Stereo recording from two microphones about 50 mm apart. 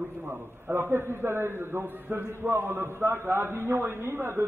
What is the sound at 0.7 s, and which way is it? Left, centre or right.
A man's voice, right.